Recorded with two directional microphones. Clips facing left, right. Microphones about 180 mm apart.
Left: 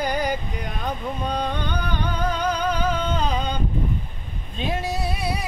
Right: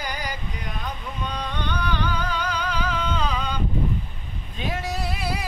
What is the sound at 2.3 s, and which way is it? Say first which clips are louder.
Music: left 4 dB; 45° left (ahead or behind).